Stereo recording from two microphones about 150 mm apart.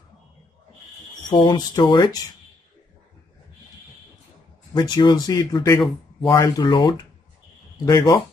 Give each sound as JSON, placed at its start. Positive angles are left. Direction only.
{"t": 1.3, "sound": "speech", "side_deg": 30}
{"t": 4.7, "sound": "speech", "side_deg": 25}
{"t": 6.6, "sound": "speech", "side_deg": 30}